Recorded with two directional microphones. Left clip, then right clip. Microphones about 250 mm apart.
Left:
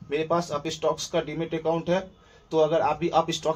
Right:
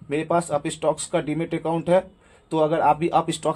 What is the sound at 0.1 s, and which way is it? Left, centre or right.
Speech, right.